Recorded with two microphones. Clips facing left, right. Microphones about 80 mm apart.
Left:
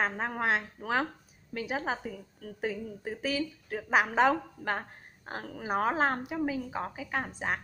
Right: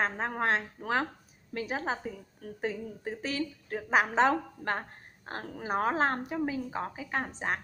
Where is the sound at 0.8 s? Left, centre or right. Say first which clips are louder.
Right 1 dB; right.